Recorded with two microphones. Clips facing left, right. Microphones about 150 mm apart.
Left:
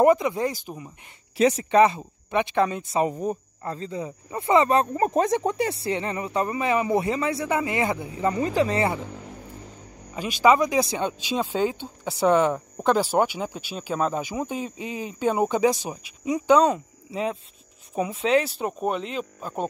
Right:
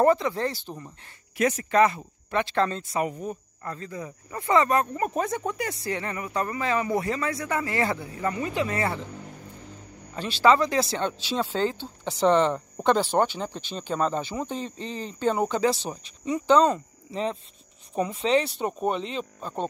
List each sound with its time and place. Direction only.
0.0 s speech: 15° left (ahead or behind)
1.3 s speech: 25° left (ahead or behind)
2.9 s speech: 25° left (ahead or behind)
10.1 s speech: 10° left (ahead or behind)